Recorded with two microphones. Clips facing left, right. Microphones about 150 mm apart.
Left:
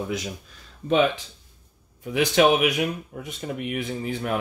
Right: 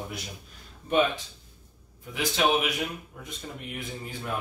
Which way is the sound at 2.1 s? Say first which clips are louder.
Left 7 dB; 70° left (ahead or behind).